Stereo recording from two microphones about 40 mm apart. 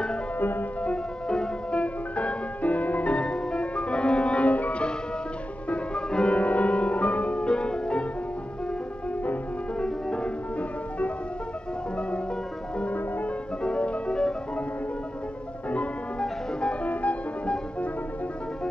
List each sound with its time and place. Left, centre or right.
0.4 s music: left
0.8 s music: left
5.7 s music: left
6.3 s music: left
9.8 s music: left
13.6 s music: left
16.8 s music: left